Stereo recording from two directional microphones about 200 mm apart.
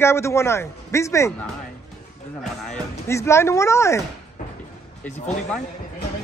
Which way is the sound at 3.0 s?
15° left (ahead or behind).